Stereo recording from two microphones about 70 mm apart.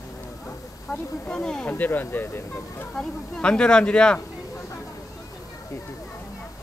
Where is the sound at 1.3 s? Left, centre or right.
Centre.